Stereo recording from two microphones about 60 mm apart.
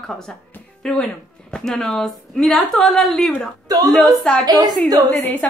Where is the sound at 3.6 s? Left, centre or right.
Right.